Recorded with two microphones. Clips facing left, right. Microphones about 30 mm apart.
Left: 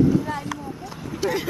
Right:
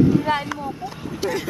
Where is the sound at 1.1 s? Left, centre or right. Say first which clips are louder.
Left 1 dB; centre.